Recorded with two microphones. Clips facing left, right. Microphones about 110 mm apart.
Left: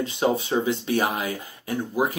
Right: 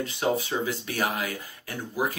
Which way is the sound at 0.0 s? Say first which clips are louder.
Left 3 dB; 25° left (ahead or behind).